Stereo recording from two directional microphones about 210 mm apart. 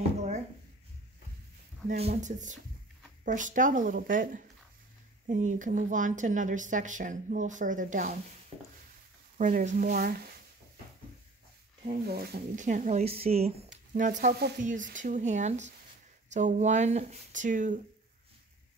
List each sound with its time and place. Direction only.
1.9 s speech: 35° right (ahead or behind)
9.4 s speech: 35° right (ahead or behind)
12.1 s speech: 50° right (ahead or behind)